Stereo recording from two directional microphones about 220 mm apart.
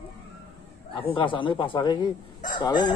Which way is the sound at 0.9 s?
25° left (ahead or behind).